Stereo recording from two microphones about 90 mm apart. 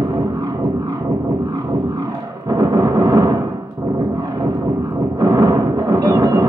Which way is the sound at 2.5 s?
45° right (ahead or behind).